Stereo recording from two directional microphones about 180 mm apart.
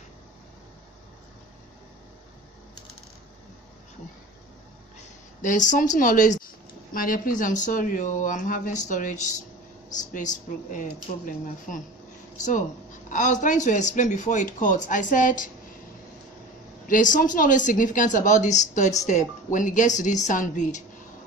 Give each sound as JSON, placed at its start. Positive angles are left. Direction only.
{"t": 5.4, "sound": "speech", "side_deg": 45}
{"t": 16.8, "sound": "speech", "side_deg": 45}